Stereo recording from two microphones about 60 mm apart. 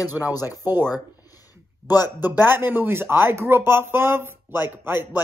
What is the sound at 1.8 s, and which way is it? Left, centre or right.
Speech, left.